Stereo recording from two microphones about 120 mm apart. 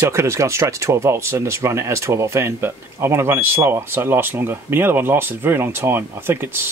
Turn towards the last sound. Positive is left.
turn(degrees=-20)  # may be behind; listen again after turning